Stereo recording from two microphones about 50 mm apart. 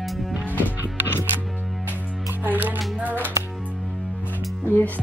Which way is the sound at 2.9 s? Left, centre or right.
Right.